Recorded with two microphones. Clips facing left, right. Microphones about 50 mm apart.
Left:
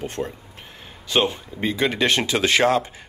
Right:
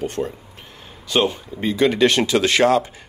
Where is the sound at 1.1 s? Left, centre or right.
Centre.